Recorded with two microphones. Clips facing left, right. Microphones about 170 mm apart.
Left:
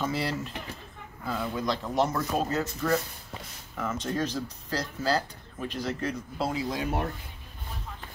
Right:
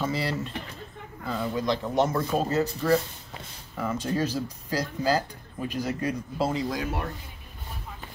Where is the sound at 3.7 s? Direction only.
10° right (ahead or behind).